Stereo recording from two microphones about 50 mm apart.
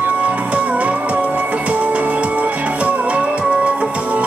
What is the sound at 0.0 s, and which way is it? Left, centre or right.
Music, right.